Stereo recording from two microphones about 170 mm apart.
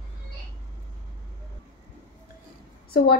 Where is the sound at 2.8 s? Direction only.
65° left (ahead or behind).